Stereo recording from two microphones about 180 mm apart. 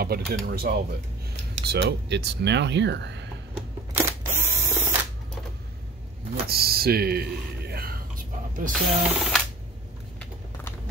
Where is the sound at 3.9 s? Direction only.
15° right (ahead or behind).